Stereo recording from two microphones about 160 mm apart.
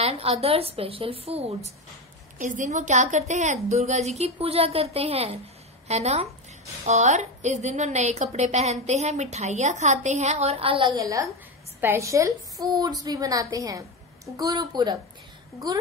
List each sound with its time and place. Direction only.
0.0 s a woman's voice: 40° right (ahead or behind)
2.3 s a woman's voice: 55° right (ahead or behind); by 15.0 s 25° right (ahead or behind)